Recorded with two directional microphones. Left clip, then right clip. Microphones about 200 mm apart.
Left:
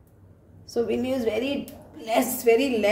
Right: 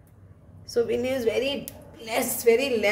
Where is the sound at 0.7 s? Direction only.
10° left (ahead or behind).